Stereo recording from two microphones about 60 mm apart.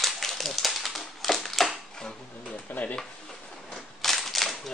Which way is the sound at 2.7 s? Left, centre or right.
Left.